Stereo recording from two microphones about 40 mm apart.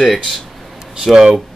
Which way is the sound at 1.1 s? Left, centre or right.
Centre.